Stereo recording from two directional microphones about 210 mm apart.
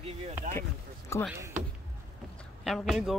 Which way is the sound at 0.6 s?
15° left (ahead or behind).